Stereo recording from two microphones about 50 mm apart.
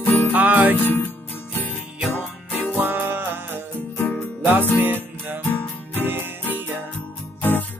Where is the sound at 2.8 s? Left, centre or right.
Right.